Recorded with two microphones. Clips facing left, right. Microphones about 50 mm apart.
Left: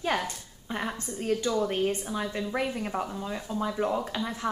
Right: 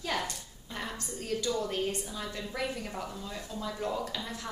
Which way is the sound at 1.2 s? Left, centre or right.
Left.